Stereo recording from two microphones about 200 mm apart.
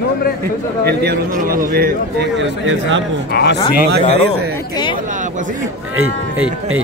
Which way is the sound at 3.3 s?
55° left (ahead or behind).